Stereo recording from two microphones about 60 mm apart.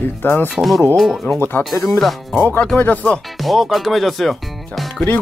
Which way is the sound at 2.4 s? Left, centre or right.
Left.